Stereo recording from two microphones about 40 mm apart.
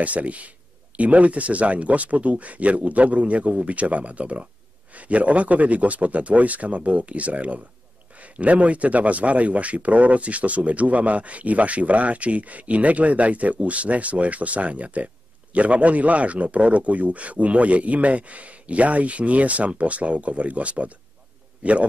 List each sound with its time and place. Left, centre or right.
0.0 s speech: right